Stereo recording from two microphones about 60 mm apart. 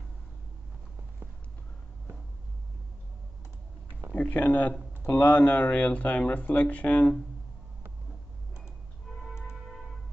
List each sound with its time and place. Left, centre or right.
4.1 s speech: left
9.1 s music: centre